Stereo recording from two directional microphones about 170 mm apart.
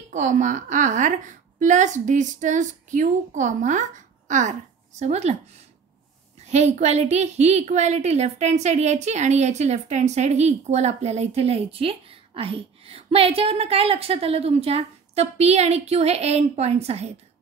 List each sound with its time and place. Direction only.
0.1 s a woman's voice: 45° right (ahead or behind)
6.4 s a woman's voice: 40° right (ahead or behind)